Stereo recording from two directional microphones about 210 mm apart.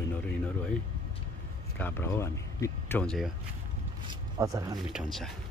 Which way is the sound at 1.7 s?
10° left (ahead or behind).